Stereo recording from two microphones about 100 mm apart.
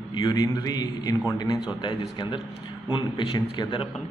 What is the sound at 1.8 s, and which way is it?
A man's voice, 50° left (ahead or behind).